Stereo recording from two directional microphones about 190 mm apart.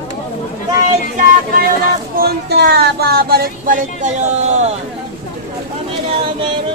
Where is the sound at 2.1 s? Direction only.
55° right (ahead or behind); by 4.7 s 35° right (ahead or behind).